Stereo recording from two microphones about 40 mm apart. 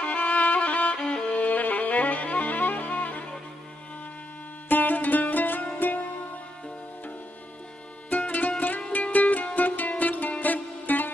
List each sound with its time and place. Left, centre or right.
0.0 s violin: left
1.3 s music: left
4.6 s music: left
8.1 s music: left